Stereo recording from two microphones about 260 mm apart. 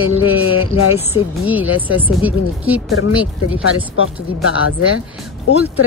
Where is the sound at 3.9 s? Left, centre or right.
Left.